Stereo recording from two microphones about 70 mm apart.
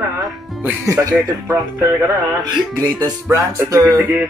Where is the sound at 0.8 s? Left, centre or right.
Right.